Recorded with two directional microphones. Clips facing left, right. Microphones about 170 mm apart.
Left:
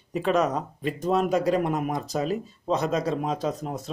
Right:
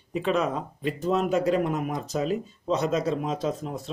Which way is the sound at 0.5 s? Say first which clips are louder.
Left 1 dB; 40° left (ahead or behind).